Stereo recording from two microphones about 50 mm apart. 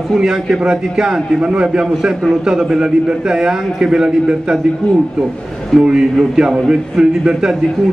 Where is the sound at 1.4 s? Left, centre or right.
Right.